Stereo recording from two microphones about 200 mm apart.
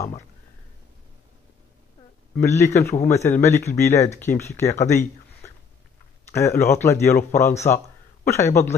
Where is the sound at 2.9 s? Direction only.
35° left (ahead or behind).